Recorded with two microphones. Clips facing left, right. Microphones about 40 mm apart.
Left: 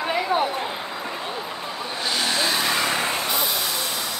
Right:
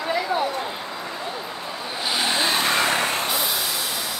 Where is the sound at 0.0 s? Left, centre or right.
Left.